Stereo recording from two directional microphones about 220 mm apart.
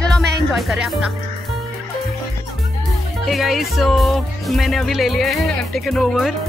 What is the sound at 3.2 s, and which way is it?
Music, centre (ahead or behind).